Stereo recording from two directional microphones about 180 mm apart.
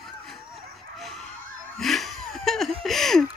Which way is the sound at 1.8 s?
Centre (ahead or behind).